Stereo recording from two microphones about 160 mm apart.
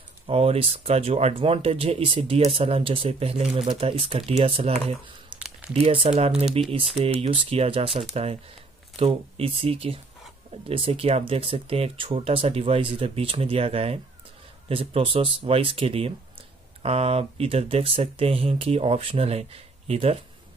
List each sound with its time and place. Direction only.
0.3 s speech: 40° right (ahead or behind)
5.3 s a sound: 30° right (ahead or behind)
5.7 s speech: 40° right (ahead or behind)